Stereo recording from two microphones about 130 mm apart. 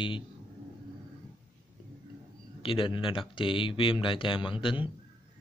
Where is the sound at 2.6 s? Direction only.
40° left (ahead or behind).